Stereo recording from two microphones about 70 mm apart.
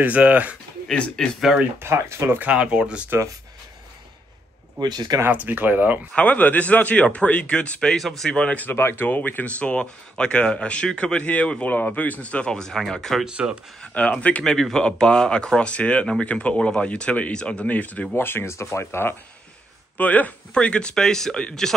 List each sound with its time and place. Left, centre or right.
0.0 s speech: right
0.8 s speech: centre
1.4 s speech: centre
1.8 s speech: right
2.5 s speech: centre
4.7 s speech: right
5.3 s speech: right
6.1 s speech: left
8.6 s speech: left; by 13.2 s centre
13.2 s speech: centre
13.9 s speech: centre
14.4 s speech: centre
18.1 s speech: left
20.0 s speech: left